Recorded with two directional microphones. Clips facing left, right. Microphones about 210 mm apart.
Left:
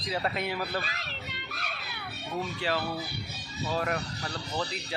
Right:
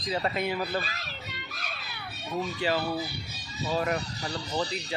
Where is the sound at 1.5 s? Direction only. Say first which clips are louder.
Left 1 dB; 60° left (ahead or behind).